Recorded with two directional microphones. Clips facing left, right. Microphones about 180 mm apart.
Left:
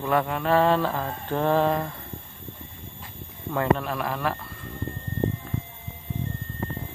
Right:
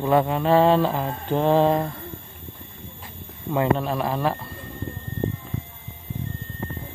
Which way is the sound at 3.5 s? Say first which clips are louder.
Right 2 dB; 20° right (ahead or behind).